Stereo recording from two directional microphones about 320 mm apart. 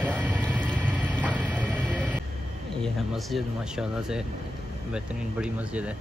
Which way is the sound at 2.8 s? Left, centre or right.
Centre.